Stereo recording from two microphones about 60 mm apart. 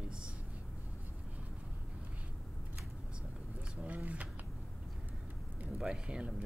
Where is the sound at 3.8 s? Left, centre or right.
Right.